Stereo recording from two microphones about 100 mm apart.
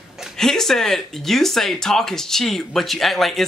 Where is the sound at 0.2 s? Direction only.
5° left (ahead or behind).